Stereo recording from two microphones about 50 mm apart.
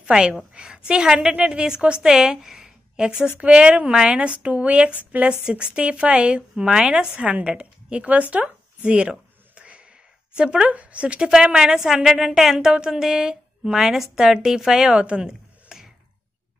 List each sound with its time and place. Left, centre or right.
0.0 s a woman's voice: centre
3.3 s a woman's voice: right
7.5 s a sound: right
10.3 s a woman's voice: centre
12.5 s a woman's voice: centre
15.0 s speech: right
15.7 s a sound: centre